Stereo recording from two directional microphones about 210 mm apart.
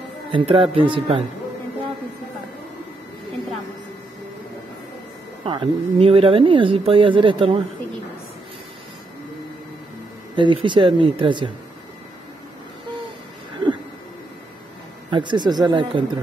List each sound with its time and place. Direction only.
0.3 s speech: 25° right (ahead or behind)
5.4 s speech: 25° right (ahead or behind)
10.3 s speech: 25° right (ahead or behind)
15.0 s speech: 20° right (ahead or behind)